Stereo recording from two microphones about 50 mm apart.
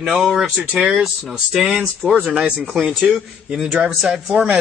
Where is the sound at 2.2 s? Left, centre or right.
Centre.